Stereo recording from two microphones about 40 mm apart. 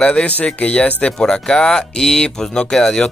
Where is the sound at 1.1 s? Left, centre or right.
Centre.